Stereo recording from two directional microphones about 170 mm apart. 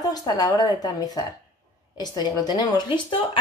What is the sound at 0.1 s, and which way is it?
Speech, 20° left (ahead or behind).